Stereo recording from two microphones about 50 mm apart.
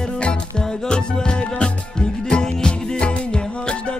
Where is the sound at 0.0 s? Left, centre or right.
Centre.